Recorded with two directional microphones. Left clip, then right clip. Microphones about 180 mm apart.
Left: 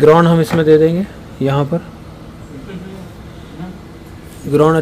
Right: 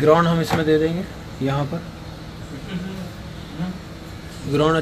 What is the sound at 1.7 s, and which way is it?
Speech, 90° left.